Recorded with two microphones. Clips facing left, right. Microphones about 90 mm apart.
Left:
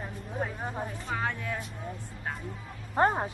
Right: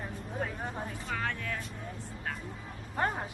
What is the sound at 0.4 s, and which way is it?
Speech, 15° left (ahead or behind).